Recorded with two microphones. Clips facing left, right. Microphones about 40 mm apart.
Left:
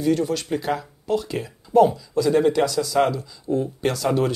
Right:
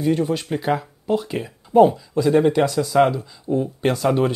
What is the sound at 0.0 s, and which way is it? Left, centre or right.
Speech, right.